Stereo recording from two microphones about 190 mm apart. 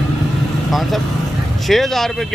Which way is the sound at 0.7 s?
Centre (ahead or behind).